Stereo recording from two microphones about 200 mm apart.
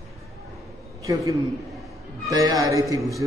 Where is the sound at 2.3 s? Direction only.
20° right (ahead or behind).